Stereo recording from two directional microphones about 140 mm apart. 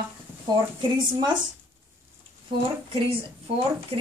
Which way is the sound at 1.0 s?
35° right (ahead or behind).